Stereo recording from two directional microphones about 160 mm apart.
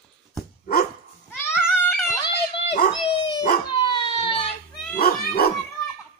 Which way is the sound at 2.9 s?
25° left (ahead or behind).